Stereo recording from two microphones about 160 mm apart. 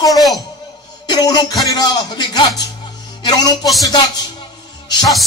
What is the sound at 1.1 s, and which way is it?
Speech, 25° left (ahead or behind).